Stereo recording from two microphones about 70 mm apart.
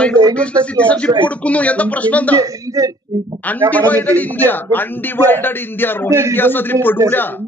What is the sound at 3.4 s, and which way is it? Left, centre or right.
Speech, left.